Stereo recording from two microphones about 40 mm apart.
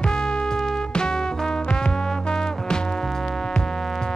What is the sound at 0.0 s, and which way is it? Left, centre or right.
Music, centre.